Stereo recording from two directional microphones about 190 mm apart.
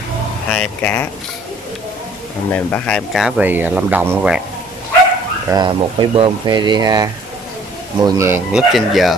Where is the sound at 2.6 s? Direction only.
5° left (ahead or behind).